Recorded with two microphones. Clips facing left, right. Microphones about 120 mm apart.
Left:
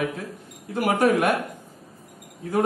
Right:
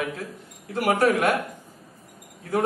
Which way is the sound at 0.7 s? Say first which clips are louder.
Left 1 dB; 20° left (ahead or behind).